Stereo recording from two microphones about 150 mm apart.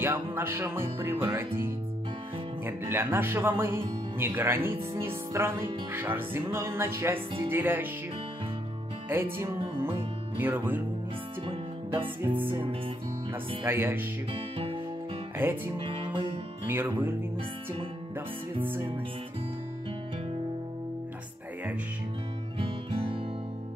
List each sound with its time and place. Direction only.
0.0 s music: 15° right (ahead or behind)
9.1 s music: 15° right (ahead or behind)
12.4 s music: 15° right (ahead or behind)
13.7 s music: 15° right (ahead or behind)
15.3 s music: 15° right (ahead or behind)
15.8 s music: 35° right (ahead or behind)
16.6 s music: 15° right (ahead or behind)
22.6 s music: 35° right (ahead or behind)